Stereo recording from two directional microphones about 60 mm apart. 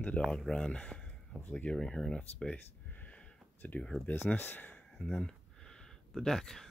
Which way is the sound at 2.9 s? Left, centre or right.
Left.